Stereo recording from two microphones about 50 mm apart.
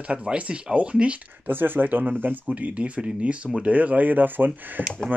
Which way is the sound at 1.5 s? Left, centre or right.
Right.